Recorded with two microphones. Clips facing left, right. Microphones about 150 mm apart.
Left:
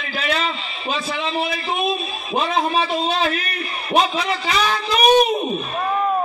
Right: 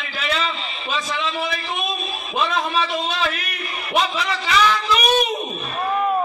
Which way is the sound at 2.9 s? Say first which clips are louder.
Left 3 dB; 45° left (ahead or behind).